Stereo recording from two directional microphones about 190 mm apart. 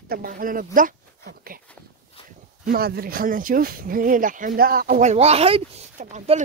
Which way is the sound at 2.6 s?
55° right (ahead or behind).